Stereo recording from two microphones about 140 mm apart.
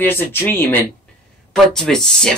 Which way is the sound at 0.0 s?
15° left (ahead or behind).